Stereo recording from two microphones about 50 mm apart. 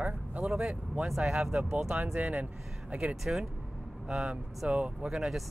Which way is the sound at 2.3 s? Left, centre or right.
Right.